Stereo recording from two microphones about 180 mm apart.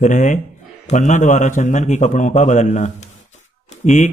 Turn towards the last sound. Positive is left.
turn(degrees=45)  # may be behind; listen again after turning